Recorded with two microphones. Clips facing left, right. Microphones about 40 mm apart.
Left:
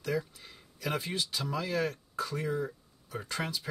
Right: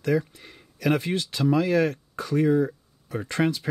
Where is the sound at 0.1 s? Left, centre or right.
Right.